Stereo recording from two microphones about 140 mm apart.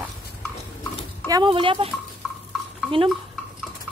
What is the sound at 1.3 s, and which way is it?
Speech, 35° right (ahead or behind).